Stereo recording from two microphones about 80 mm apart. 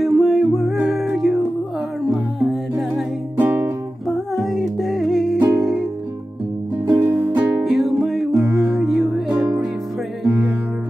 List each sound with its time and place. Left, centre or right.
0.0 s music: centre
3.3 s music: right
4.4 s music: centre
6.9 s music: right
7.6 s music: centre